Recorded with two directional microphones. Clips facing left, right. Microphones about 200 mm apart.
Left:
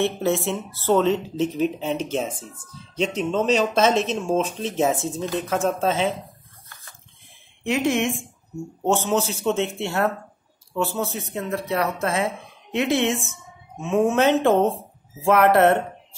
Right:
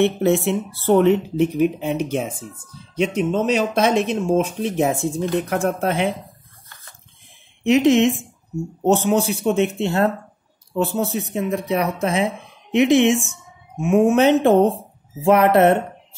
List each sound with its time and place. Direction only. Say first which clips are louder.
0.0 s speech: right 5 dB; 15° right (ahead or behind)
1.9 s speech: right 3 dB; 55° right (ahead or behind)
3.2 s speech: right 1 dB; 10° right (ahead or behind)
7.6 s a woman's voice: right 7 dB; 20° right (ahead or behind)